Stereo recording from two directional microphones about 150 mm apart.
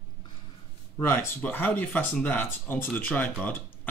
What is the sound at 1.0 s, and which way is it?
Speech, 15° left (ahead or behind).